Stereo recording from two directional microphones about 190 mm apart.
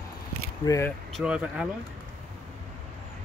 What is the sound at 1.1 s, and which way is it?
Speech, 5° right (ahead or behind).